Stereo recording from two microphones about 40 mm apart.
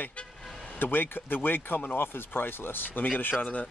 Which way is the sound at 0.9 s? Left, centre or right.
Left.